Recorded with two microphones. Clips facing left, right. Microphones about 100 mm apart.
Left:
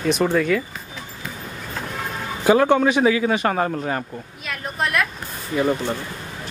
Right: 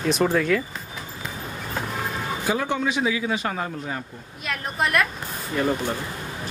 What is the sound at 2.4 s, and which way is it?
Speech, 60° left (ahead or behind).